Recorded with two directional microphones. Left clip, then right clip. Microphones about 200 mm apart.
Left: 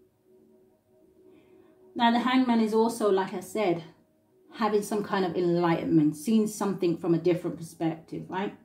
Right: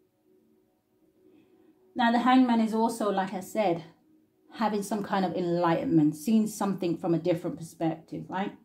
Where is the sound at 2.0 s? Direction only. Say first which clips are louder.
Right 1 dB; 40° right (ahead or behind).